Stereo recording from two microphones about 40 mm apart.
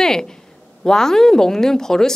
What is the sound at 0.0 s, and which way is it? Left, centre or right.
Speech, centre.